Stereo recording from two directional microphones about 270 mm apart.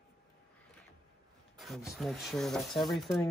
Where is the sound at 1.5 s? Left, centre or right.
Centre.